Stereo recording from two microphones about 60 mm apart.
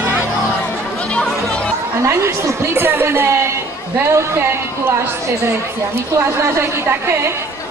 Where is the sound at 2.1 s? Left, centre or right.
Right.